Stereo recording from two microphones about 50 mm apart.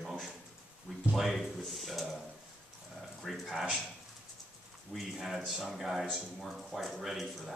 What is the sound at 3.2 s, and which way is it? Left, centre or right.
Speech, centre.